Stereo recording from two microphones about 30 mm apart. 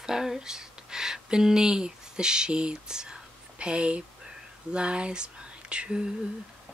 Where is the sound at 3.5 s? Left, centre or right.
Right.